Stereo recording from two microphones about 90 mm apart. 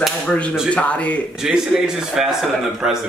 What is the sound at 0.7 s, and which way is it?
Speech, 15° left (ahead or behind).